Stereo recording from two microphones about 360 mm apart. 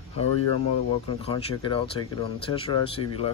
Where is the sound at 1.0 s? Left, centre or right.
Centre.